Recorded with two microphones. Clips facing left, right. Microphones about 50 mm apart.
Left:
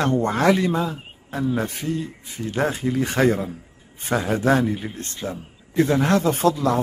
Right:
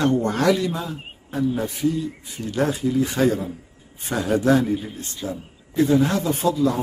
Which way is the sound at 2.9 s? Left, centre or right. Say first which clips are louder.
Left 1 dB; left.